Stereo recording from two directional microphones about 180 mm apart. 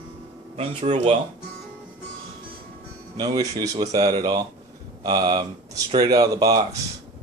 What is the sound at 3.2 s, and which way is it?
Speech, 20° right (ahead or behind).